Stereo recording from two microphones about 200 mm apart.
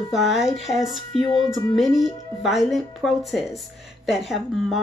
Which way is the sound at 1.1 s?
25° left (ahead or behind).